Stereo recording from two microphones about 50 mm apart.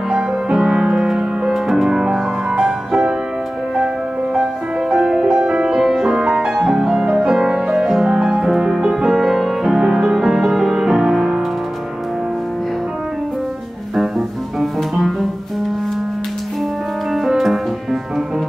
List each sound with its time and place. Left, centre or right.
0.5 s music: centre
6.1 s music: centre
7.7 s music: centre
13.9 s music: centre
17.1 s music: centre